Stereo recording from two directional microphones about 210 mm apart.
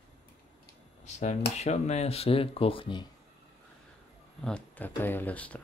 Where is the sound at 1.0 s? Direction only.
35° left (ahead or behind).